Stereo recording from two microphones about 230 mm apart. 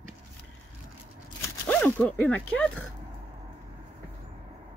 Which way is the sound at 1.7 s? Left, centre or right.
Centre.